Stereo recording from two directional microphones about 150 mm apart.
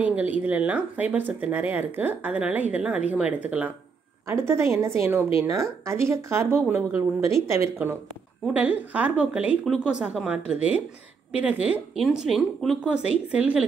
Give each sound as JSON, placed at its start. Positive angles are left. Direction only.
{"t": 0.0, "sound": "speech", "side_deg": -10}